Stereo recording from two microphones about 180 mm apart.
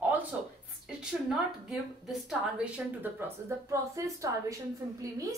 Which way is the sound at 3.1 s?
15° right (ahead or behind).